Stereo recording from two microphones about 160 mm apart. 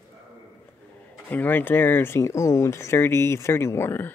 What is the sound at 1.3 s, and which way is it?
Speech, 10° left (ahead or behind).